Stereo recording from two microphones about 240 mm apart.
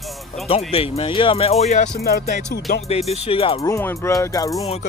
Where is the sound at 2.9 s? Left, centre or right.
Left.